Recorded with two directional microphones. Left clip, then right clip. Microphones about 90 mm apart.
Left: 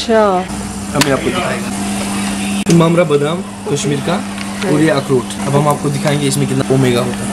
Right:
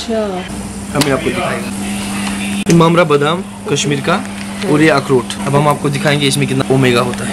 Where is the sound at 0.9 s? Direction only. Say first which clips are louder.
Left 1 dB; 15° left (ahead or behind).